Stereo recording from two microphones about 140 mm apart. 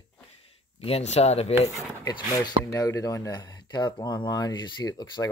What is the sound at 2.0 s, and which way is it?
Speech, 25° left (ahead or behind).